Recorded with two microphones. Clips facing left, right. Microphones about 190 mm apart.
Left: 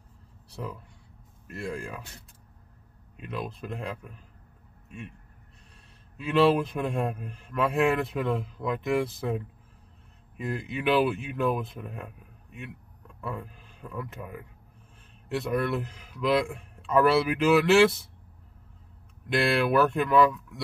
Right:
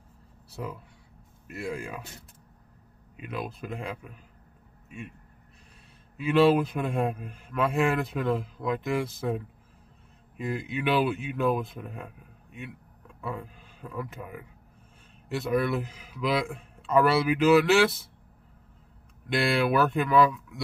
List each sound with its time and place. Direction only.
1.5 s a man's voice: 5° right (ahead or behind)
3.2 s a man's voice: 5° right (ahead or behind)
6.1 s a man's voice: 5° right (ahead or behind)
19.2 s a man's voice: centre (ahead or behind)